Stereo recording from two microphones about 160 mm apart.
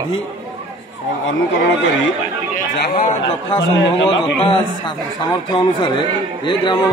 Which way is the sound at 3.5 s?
30° left (ahead or behind).